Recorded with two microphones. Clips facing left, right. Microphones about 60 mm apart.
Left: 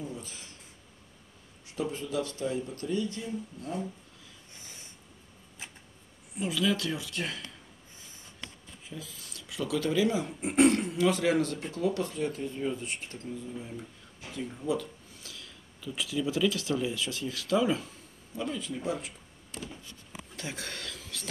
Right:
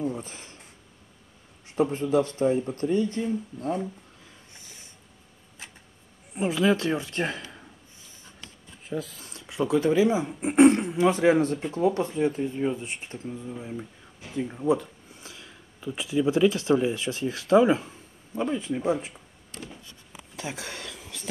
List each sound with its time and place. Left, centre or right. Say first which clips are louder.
0.0 s speech: right 9 dB; right
1.8 s speech: right 9 dB; right
6.3 s speech: right 6 dB; right
8.8 s speech: right 11 dB; right
9.2 s speech: right 3 dB; right
20.3 s a sound: right 4 dB; centre